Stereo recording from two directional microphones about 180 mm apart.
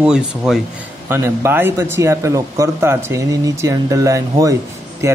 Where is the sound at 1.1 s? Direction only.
15° right (ahead or behind).